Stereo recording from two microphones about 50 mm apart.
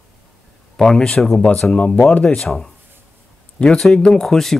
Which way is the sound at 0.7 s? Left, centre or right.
Centre.